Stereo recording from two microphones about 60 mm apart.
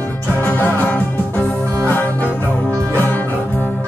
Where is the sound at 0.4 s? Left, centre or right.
Left.